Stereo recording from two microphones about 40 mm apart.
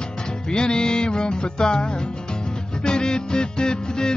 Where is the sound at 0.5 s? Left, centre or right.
Left.